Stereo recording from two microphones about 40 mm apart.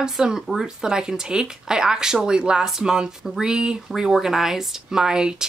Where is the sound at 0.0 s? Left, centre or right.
Centre.